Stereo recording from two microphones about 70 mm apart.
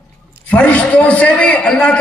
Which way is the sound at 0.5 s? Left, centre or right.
Centre.